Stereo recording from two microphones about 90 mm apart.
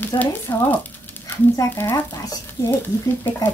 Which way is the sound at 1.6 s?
25° left (ahead or behind).